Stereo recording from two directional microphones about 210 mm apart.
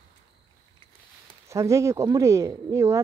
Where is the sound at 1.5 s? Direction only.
15° right (ahead or behind).